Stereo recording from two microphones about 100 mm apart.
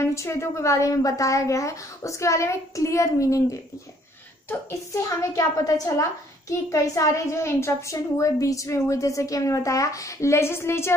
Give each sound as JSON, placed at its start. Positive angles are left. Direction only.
{"t": 0.0, "sound": "a woman's voice", "side_deg": 30}
{"t": 4.5, "sound": "a woman's voice", "side_deg": 25}
{"t": 5.3, "sound": "a woman's voice", "side_deg": 35}